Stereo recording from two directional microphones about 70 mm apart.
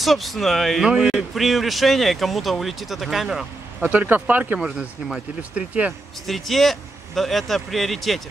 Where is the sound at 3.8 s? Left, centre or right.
Right.